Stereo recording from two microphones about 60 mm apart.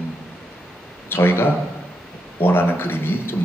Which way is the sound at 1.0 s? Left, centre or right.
Left.